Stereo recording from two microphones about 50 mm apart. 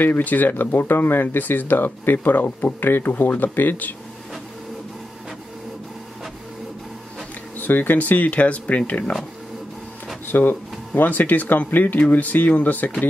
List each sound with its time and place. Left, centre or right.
0.0 s speech: left
7.5 s speech: left
10.2 s speech: left